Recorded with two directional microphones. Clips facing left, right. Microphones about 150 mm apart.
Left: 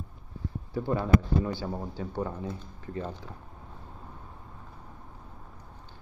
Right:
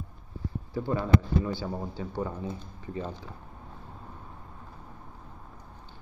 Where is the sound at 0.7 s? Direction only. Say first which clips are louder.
Left 1 dB; centre (ahead or behind).